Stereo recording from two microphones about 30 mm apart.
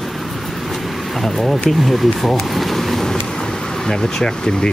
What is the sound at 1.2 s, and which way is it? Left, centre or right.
Speech, centre.